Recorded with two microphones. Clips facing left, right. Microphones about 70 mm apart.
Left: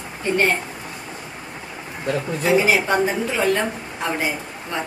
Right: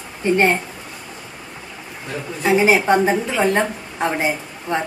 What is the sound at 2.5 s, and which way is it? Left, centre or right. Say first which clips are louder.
A woman's voice: right 3 dB; right.